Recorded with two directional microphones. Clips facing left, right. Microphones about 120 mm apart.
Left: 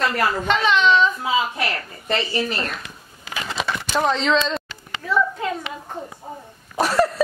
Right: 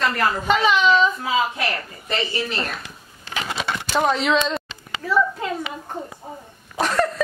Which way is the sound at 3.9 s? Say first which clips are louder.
Even; 5° right (ahead or behind).